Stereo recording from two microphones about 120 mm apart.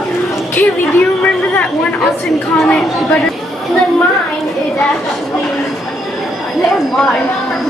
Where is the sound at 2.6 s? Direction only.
5° left (ahead or behind).